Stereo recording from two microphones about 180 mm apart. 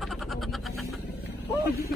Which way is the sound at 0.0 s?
Centre (ahead or behind).